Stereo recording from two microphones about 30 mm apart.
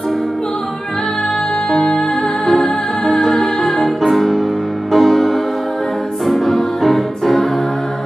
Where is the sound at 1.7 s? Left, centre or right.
Left.